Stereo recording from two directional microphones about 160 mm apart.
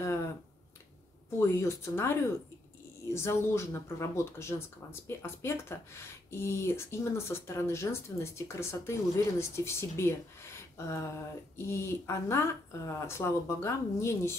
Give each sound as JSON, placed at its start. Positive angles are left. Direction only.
{"t": 0.0, "sound": "finger snapping", "side_deg": 15}
{"t": 1.4, "sound": "speech", "side_deg": 15}